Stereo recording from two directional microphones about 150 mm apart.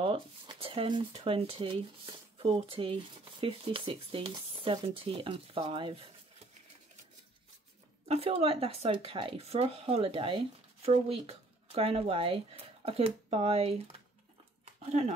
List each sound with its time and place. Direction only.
0.0 s speech: 35° right (ahead or behind)
8.1 s speech: 40° right (ahead or behind)
14.6 s a sound: 50° right (ahead or behind)